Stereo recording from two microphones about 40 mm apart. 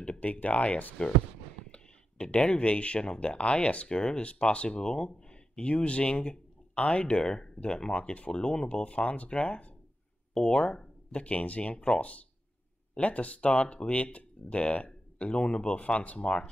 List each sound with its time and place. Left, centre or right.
0.2 s speech: left
12.0 s speech: left